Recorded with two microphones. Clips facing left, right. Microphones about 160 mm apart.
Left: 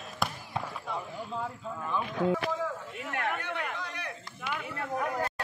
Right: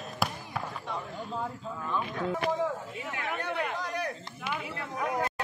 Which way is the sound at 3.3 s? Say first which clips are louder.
Right 4 dB; 35° right (ahead or behind).